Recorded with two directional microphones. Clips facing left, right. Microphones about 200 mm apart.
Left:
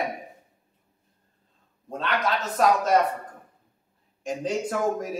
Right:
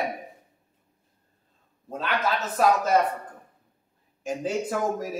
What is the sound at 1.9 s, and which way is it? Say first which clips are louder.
A man's voice: even; 5° right (ahead or behind).